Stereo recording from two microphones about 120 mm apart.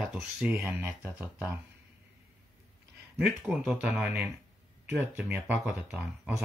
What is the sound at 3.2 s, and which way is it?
Speech, 5° right (ahead or behind).